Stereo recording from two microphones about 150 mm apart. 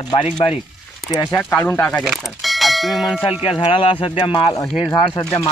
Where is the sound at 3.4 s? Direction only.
40° left (ahead or behind).